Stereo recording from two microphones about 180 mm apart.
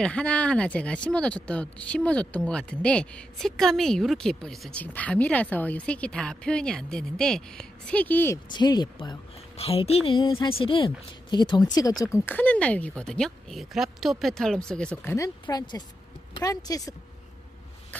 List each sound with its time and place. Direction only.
0.0 s speech: 5° left (ahead or behind)
8.5 s speech: 25° left (ahead or behind); by 15.1 s 5° left (ahead or behind)
15.1 s speech: 20° left (ahead or behind)